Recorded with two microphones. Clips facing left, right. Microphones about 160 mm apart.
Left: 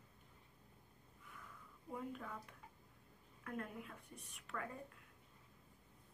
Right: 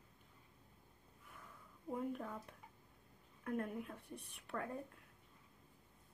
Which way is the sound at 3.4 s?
40° right (ahead or behind).